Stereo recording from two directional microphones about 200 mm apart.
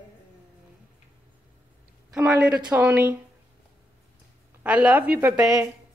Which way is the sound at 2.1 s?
5° right (ahead or behind).